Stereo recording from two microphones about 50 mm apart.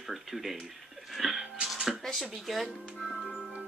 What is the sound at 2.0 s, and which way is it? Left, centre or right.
Speech, centre.